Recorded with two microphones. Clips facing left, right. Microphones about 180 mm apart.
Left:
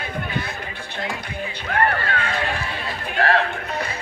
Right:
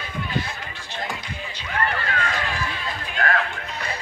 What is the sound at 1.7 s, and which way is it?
Run, 60° left (ahead or behind).